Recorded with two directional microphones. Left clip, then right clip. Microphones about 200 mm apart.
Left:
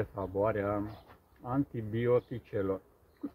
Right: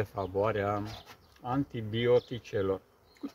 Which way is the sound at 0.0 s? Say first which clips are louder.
Right 1 dB; 30° right (ahead or behind).